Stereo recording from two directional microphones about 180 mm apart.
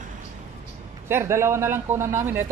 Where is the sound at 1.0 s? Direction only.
15° right (ahead or behind).